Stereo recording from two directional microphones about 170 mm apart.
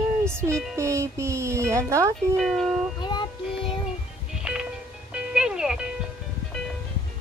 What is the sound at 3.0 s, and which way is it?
Child singing, 25° left (ahead or behind).